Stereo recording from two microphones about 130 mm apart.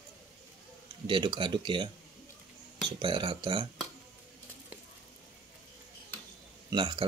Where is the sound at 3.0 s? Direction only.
40° right (ahead or behind).